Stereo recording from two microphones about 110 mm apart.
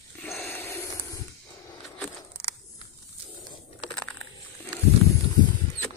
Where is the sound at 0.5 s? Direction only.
20° left (ahead or behind).